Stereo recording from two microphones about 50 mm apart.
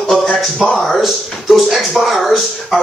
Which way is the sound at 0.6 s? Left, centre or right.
Centre.